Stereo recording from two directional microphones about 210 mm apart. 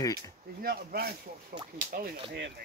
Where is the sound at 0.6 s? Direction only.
45° right (ahead or behind).